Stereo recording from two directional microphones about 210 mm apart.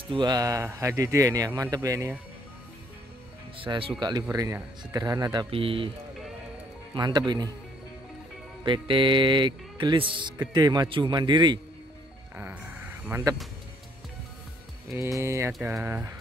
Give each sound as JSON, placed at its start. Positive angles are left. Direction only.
{"t": 0.1, "sound": "speech", "side_deg": -20}
{"t": 3.5, "sound": "speech", "side_deg": -25}
{"t": 7.0, "sound": "speech", "side_deg": -20}
{"t": 8.6, "sound": "speech", "side_deg": -25}
{"t": 12.4, "sound": "speech", "side_deg": -10}
{"t": 15.0, "sound": "speech", "side_deg": -15}